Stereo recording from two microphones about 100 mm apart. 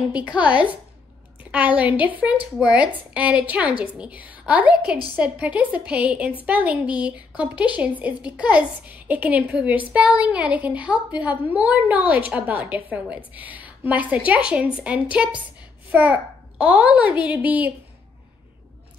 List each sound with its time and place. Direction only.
0.1 s a woman's voice: 15° right (ahead or behind)